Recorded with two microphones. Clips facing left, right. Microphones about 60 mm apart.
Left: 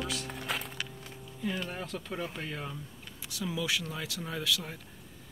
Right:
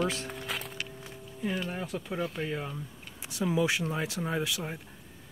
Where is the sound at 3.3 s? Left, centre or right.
Right.